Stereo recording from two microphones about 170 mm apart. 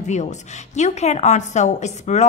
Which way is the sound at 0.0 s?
45° left (ahead or behind).